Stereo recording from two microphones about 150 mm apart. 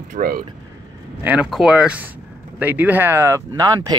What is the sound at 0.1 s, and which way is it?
Speech, 75° right (ahead or behind).